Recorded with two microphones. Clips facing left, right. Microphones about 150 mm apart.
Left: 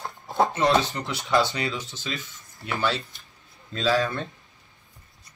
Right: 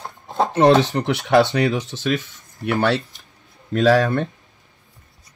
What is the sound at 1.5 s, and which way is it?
Speech, 65° right (ahead or behind).